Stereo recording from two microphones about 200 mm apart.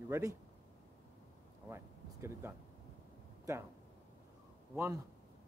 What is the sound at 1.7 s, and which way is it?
Speech, 15° right (ahead or behind).